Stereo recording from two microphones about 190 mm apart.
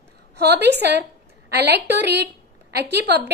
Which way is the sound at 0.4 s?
60° right (ahead or behind).